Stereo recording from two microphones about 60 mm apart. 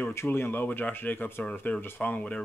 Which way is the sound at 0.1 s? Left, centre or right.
Left.